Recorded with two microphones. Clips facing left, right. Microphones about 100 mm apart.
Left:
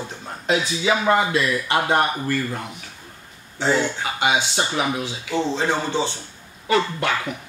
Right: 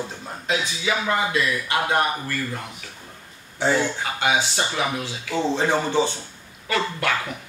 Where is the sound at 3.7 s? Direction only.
15° left (ahead or behind).